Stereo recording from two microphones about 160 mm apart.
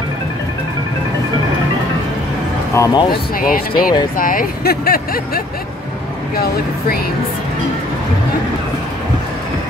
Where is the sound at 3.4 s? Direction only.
65° left (ahead or behind).